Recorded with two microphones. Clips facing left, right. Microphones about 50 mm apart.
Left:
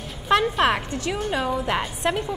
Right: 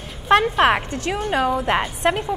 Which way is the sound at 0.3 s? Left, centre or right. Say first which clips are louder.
Right 4 dB; right.